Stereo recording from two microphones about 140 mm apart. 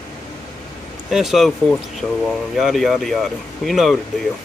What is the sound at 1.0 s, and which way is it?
Speech, 5° right (ahead or behind).